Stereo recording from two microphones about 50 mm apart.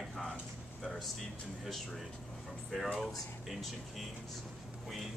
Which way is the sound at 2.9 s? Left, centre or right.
Centre.